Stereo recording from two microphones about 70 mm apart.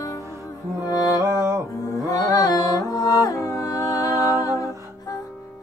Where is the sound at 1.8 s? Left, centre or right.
Left.